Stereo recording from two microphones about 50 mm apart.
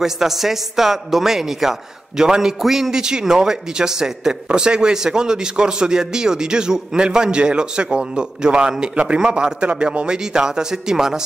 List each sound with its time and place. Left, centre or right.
0.0 s a man's voice: centre